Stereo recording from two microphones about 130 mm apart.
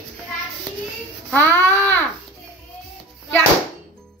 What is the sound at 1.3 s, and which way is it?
Speech, 15° left (ahead or behind).